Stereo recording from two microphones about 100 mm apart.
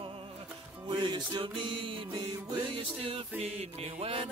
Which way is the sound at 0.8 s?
50° right (ahead or behind).